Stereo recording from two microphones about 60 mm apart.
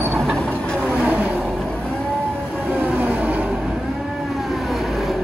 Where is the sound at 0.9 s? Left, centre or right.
Right.